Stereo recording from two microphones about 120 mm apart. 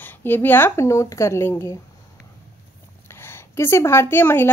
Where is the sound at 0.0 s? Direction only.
15° left (ahead or behind).